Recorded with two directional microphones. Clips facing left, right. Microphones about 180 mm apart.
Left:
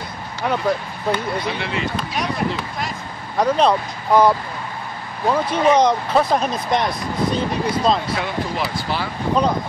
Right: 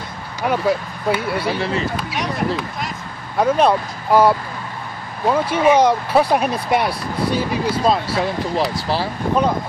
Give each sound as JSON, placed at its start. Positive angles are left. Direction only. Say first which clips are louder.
{"t": 0.4, "sound": "speech", "louder": "right 2 dB", "side_deg": -5}
{"t": 1.5, "sound": "speech", "louder": "right 4 dB", "side_deg": -35}
{"t": 2.0, "sound": "speech", "louder": "even", "side_deg": 0}
{"t": 8.1, "sound": "speech", "louder": "right 3 dB", "side_deg": -35}